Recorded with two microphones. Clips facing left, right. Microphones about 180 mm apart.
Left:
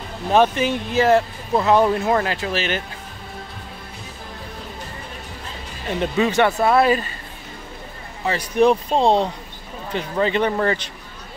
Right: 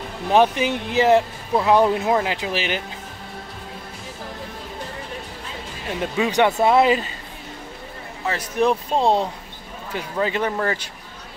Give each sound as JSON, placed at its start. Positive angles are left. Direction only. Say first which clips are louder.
{"t": 0.3, "sound": "speech", "louder": "even", "side_deg": -15}
{"t": 5.9, "sound": "speech", "louder": "left 3 dB", "side_deg": -10}
{"t": 8.3, "sound": "speech", "louder": "left 4 dB", "side_deg": 0}